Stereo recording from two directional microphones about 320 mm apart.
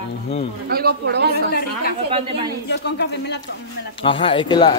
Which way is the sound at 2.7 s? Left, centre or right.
Left.